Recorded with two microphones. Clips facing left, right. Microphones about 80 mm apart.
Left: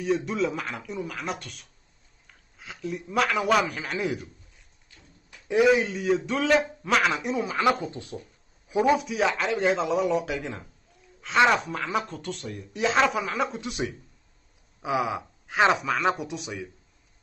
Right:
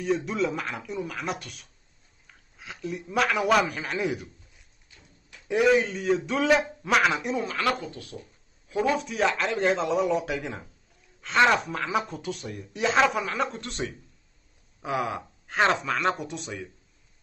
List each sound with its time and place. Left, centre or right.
0.0 s speech: centre
5.5 s speech: centre
7.4 s speech: centre
8.6 s a sound: centre
8.9 s speech: centre